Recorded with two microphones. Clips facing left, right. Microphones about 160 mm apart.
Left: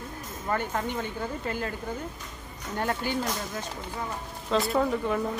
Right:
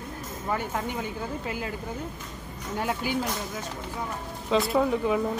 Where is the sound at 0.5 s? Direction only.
5° right (ahead or behind).